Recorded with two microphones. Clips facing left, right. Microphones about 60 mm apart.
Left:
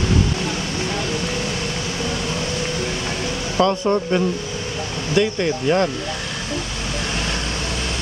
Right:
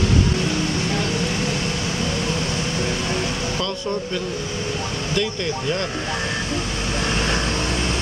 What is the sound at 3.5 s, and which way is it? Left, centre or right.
Speech, left.